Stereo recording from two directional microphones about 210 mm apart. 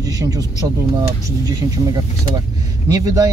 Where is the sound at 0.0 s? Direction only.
15° right (ahead or behind).